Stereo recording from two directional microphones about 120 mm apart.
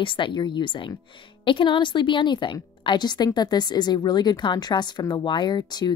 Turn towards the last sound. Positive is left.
turn(degrees=35)  # may be behind; listen again after turning